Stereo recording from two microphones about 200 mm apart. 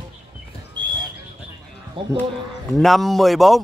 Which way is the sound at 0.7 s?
20° right (ahead or behind).